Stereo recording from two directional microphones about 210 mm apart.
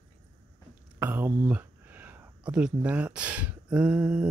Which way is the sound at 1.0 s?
10° right (ahead or behind).